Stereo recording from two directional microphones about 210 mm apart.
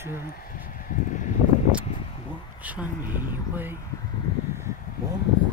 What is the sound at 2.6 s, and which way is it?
Speech, 5° right (ahead or behind).